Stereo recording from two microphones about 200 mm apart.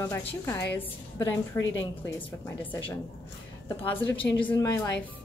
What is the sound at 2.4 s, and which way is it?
Speech, 10° left (ahead or behind).